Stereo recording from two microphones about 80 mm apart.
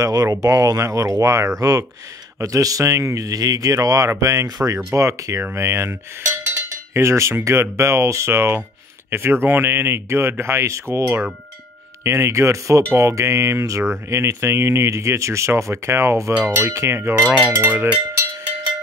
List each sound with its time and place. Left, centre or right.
0.0 s speech: right
6.5 s cowbell: right
9.1 s speech: right
16.3 s a sound: right